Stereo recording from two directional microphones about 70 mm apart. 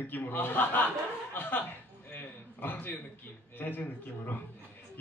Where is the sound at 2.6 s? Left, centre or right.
Left.